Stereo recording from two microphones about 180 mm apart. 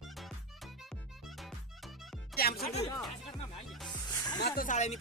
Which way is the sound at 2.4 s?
60° left (ahead or behind).